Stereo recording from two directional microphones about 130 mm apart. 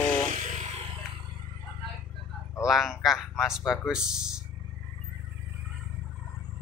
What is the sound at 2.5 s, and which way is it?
A man's voice, 5° right (ahead or behind).